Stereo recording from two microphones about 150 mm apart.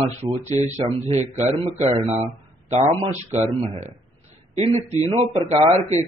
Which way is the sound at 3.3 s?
50° right (ahead or behind).